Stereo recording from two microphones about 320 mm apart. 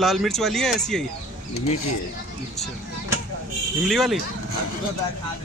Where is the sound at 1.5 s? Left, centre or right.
Left.